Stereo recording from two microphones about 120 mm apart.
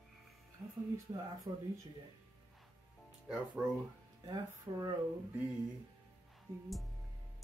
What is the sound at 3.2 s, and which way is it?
Speech, 10° right (ahead or behind).